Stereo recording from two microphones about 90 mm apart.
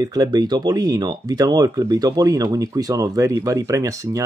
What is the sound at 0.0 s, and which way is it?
Speech, 45° right (ahead or behind).